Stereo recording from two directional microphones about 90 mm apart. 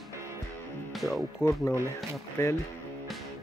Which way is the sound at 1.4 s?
30° left (ahead or behind).